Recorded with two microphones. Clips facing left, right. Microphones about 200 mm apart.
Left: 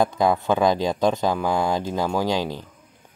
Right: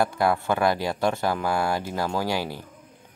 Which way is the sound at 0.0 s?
20° left (ahead or behind).